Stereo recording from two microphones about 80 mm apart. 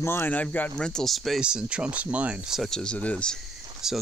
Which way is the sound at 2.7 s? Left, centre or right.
Centre.